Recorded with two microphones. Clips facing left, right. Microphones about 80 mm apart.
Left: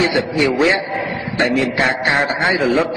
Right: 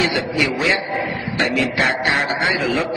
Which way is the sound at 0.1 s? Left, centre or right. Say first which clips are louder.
Left 4 dB; left.